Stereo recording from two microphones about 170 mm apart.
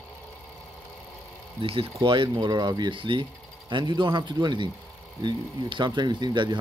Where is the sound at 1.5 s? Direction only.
30° right (ahead or behind).